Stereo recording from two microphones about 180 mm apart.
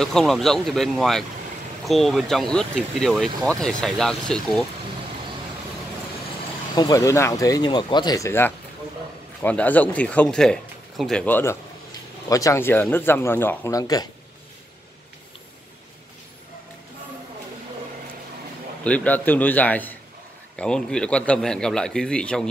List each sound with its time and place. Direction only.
0.0 s a man's voice: centre (ahead or behind)
6.7 s speech: 20° left (ahead or behind)
18.9 s a man's voice: 10° left (ahead or behind)